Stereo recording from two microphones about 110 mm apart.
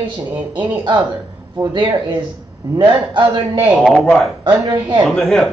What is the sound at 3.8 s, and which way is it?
Speech, 5° left (ahead or behind).